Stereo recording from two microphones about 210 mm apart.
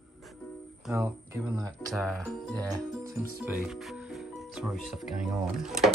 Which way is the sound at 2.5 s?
15° right (ahead or behind).